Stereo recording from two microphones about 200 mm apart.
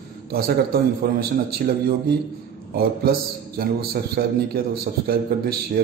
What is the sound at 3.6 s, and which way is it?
A man's voice, 50° right (ahead or behind).